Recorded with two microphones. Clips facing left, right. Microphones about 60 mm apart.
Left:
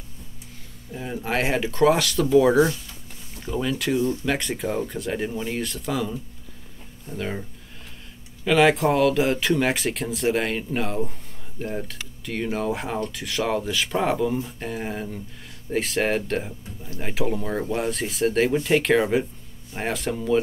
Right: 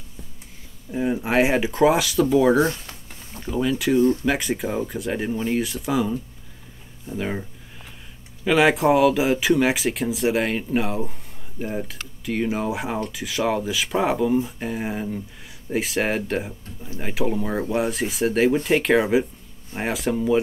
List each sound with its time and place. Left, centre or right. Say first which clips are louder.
0.9 s speech: right 6 dB; centre
2.6 s speech: left 1 dB; right
3.3 s speech: right 3 dB; centre
4.0 s speech: right 6 dB; right
4.3 s speech: right 2 dB; centre
8.5 s speech: right 1 dB; centre